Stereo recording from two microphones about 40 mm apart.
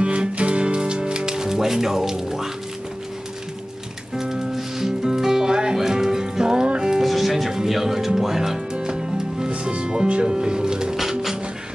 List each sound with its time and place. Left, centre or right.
0.0 s music: right; by 2.5 s centre
4.2 s music: centre
7.0 s music: centre
8.7 s music: right
11.0 s music: centre